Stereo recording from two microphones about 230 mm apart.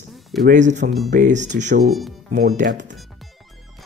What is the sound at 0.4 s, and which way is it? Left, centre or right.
Speech, right.